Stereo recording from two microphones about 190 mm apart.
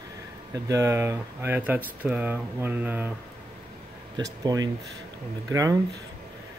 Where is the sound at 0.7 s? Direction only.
15° right (ahead or behind).